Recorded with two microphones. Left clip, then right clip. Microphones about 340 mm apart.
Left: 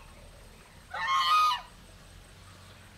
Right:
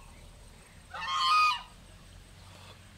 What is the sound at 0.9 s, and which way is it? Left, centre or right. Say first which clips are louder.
Goose: left 2 dB; centre.